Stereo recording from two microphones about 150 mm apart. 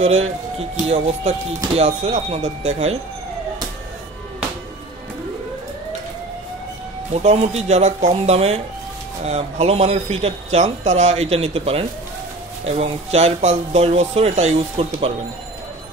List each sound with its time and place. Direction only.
0.0 s speech: 45° right (ahead or behind)
7.2 s speech: 45° right (ahead or behind)